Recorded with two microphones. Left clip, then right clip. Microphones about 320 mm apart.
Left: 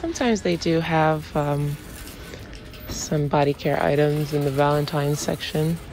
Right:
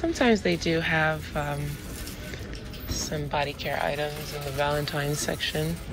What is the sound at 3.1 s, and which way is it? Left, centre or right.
A woman's voice, centre.